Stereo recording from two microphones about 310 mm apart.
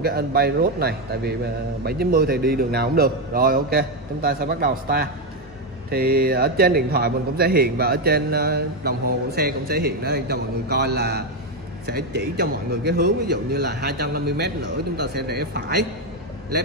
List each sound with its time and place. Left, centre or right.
0.0 s a man's voice: right